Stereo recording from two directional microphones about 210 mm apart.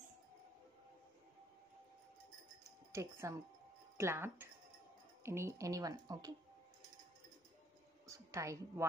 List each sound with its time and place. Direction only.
2.9 s speech: 15° right (ahead or behind)
8.1 s a woman's voice: 15° right (ahead or behind)